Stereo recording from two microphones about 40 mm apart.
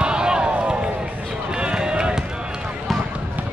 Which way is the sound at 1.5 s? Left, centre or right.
Right.